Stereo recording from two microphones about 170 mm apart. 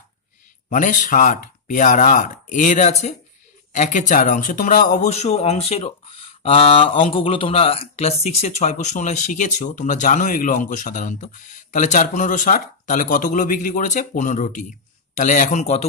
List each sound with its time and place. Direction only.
0.7 s speech: 50° left (ahead or behind)